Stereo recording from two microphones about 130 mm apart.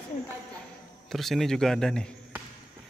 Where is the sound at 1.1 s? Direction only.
Centre (ahead or behind).